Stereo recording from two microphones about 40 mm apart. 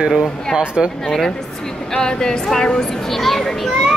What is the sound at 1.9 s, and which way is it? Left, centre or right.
Speech, centre.